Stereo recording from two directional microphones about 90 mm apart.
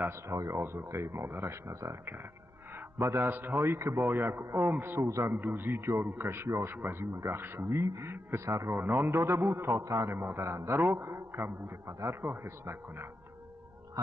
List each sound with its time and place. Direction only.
0.0 s a man's voice: 30° right (ahead or behind)